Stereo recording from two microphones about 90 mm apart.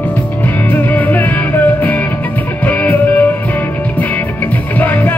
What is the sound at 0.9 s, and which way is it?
Music, 20° left (ahead or behind).